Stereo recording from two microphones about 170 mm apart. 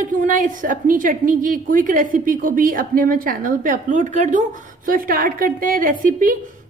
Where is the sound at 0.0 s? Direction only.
50° right (ahead or behind).